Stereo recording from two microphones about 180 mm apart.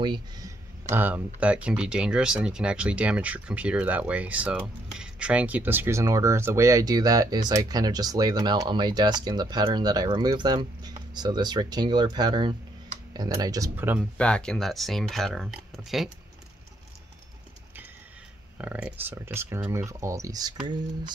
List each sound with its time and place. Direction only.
0.0 s speech: 25° right (ahead or behind)
0.8 s speech: 10° right (ahead or behind)
14.1 s speech: 5° left (ahead or behind)
18.6 s speech: 5° right (ahead or behind)